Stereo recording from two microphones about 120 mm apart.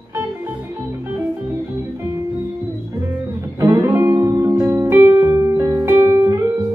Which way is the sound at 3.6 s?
25° right (ahead or behind).